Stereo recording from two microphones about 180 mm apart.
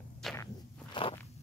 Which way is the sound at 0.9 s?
30° left (ahead or behind).